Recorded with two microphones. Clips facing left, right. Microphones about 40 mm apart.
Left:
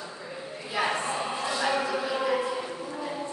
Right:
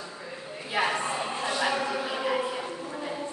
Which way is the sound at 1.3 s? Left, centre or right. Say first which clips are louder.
Even; right.